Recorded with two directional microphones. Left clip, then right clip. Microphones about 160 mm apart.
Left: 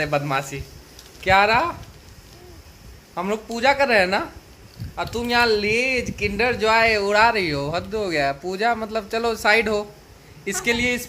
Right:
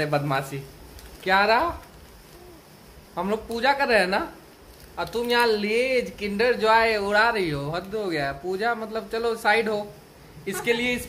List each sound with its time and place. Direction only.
0.0 s a man's voice: 15° left (ahead or behind)
3.2 s speech: 25° left (ahead or behind)